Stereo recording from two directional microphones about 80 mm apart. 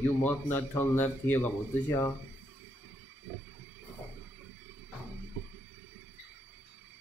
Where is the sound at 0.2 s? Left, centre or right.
Left.